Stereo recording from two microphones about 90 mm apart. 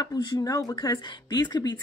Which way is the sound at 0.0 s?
45° left (ahead or behind).